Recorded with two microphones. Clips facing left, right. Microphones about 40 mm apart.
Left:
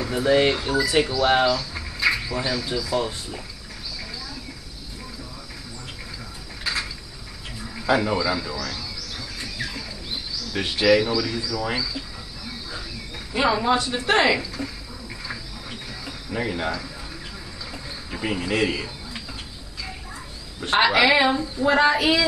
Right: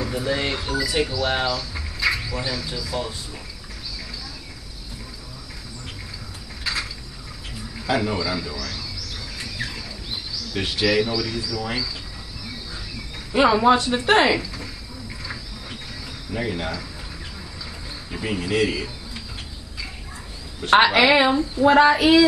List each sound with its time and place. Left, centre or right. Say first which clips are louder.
0.1 s speech: left 10 dB; centre
6.6 s a sound: even; centre
7.7 s speech: left 2 dB; centre
9.4 s a sound: right 1 dB; centre
10.5 s speech: left 3 dB; centre
13.3 s speech: right 5 dB; centre
14.3 s a sound: even; centre
18.1 s speech: right 1 dB; centre
20.8 s speech: left 2 dB; centre